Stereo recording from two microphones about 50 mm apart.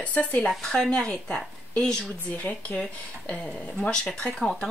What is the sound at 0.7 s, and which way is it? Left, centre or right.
Speech, centre.